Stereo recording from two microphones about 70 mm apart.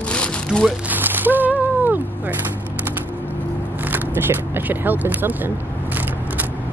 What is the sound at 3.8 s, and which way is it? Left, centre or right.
Speech, right.